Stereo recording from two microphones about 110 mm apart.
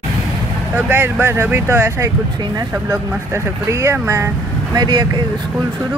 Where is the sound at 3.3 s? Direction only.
25° right (ahead or behind).